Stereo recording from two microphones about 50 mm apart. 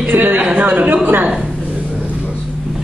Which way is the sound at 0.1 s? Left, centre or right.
Right.